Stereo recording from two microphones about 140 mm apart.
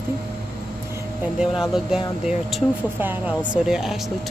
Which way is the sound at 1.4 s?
5° right (ahead or behind).